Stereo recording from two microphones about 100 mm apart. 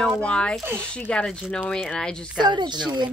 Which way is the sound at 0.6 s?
25° right (ahead or behind).